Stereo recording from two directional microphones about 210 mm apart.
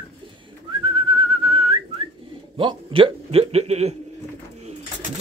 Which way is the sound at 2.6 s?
25° right (ahead or behind).